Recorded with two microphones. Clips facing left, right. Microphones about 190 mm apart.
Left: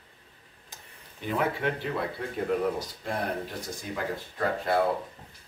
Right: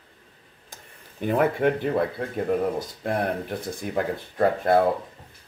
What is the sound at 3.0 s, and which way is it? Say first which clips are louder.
Speech: right 7 dB; 55° right (ahead or behind).